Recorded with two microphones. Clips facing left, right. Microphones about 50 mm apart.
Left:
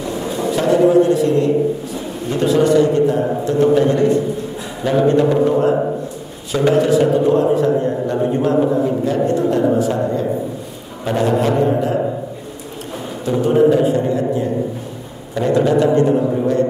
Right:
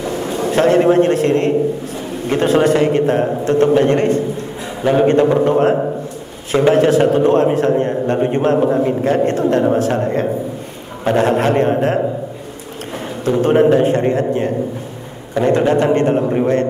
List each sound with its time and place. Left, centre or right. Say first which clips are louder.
0.5 s a man's voice: right 1 dB; right
13.4 s a man's voice: right 1 dB; right